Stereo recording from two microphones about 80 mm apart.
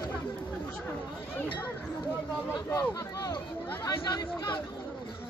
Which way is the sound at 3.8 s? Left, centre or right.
Left.